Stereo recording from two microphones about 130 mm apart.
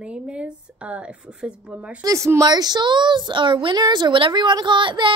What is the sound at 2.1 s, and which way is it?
A woman's voice, 25° right (ahead or behind).